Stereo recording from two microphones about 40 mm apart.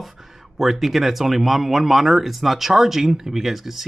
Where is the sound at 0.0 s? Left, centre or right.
Centre.